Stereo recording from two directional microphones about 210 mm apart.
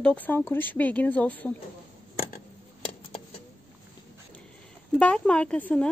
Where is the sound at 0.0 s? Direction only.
5° left (ahead or behind).